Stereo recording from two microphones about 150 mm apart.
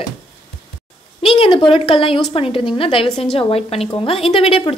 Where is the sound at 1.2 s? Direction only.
40° left (ahead or behind).